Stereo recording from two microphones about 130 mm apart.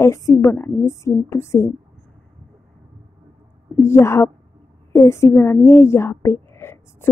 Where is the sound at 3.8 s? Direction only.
20° left (ahead or behind).